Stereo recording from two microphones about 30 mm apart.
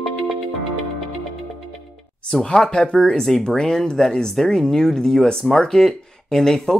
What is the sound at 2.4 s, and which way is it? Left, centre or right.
Speech, left.